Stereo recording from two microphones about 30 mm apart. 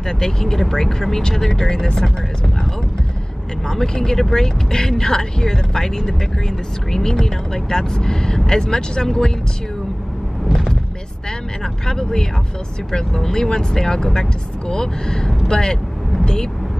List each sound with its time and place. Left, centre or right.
0.2 s speech: centre
3.6 s speech: centre
11.6 s speech: left